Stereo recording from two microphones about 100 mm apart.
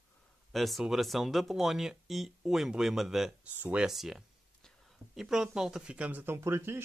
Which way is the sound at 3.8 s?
5° right (ahead or behind).